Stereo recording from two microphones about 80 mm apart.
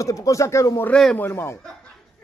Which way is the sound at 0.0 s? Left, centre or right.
Left.